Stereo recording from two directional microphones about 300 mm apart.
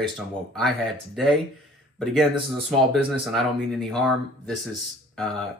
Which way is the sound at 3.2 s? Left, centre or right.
Centre.